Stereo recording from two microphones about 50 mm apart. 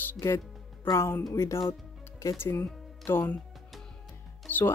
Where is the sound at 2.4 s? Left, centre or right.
Left.